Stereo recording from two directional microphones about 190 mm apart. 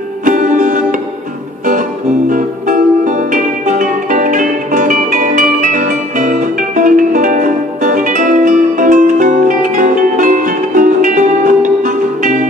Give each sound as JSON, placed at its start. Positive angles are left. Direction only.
{"t": 0.2, "sound": "music", "side_deg": -45}
{"t": 2.2, "sound": "music", "side_deg": -45}